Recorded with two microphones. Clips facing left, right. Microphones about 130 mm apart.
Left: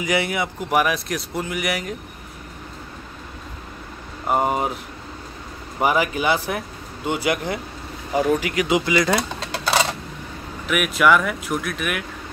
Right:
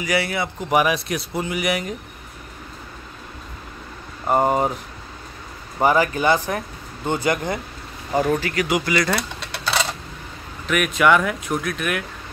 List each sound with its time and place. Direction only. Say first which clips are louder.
0.0 s speech: left 1 dB; 20° left (ahead or behind)
0.7 s speech: right 2 dB; centre (ahead or behind)
4.3 s speech: right 2 dB; 5° left (ahead or behind)
5.8 s speech: right 2 dB; 10° left (ahead or behind)
10.7 s speech: even; 5° left (ahead or behind)